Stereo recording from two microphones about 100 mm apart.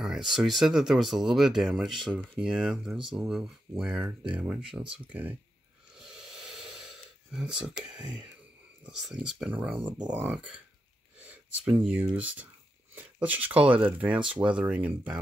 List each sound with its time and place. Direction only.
0.0 s speech: 5° right (ahead or behind)
5.9 s a sound: 5° right (ahead or behind)
7.8 s speech: 10° right (ahead or behind)
11.6 s speech: 10° right (ahead or behind)